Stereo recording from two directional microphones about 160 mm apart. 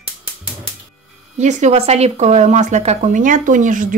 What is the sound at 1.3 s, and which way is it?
Speech, 45° right (ahead or behind).